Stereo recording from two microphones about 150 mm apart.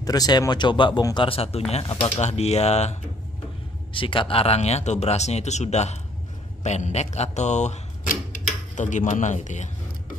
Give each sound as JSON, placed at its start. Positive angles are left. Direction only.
{"t": 0.0, "sound": "speech", "side_deg": 25}
{"t": 3.9, "sound": "speech", "side_deg": 35}